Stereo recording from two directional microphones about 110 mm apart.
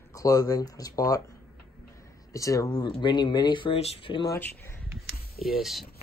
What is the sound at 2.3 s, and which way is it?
Speech, 30° left (ahead or behind).